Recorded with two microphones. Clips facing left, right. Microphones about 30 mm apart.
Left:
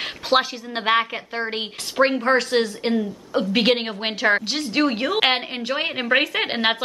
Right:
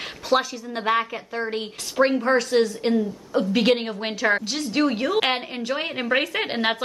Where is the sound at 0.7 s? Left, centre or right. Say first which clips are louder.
Left 3 dB; left.